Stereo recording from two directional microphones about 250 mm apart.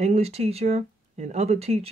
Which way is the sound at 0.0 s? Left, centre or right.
Right.